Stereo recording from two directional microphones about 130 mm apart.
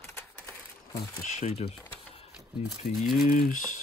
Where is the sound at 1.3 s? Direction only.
55° left (ahead or behind).